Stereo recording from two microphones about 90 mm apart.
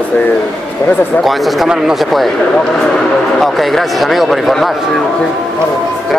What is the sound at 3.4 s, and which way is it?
Speech, centre (ahead or behind).